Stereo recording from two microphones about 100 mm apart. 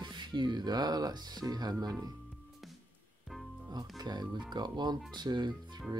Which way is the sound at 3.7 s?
40° right (ahead or behind).